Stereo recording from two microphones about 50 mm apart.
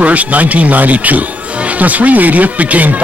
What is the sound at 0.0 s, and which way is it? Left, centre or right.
Speech, right.